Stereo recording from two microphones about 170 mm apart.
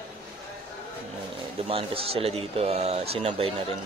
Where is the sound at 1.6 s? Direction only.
35° right (ahead or behind).